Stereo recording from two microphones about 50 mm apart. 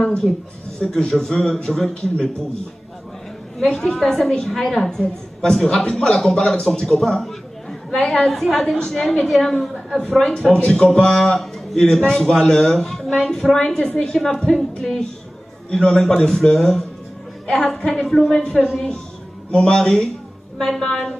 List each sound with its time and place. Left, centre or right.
0.7 s a woman's voice: centre
3.5 s a woman's voice: centre
8.7 s a woman's voice: centre
9.2 s a woman's voice: centre
14.1 s a woman's voice: centre
18.3 s a woman's voice: centre